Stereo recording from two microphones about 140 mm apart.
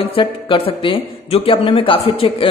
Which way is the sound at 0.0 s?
40° left (ahead or behind).